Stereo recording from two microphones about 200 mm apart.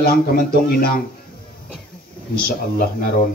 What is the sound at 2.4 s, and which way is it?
Speech, 50° left (ahead or behind).